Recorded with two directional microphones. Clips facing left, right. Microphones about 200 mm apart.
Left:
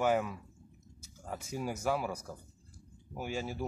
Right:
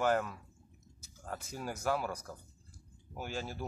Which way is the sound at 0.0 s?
5° left (ahead or behind).